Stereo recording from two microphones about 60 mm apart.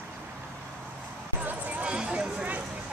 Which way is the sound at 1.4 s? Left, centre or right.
Right.